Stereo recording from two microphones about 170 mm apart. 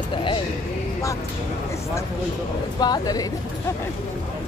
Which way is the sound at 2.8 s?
20° left (ahead or behind).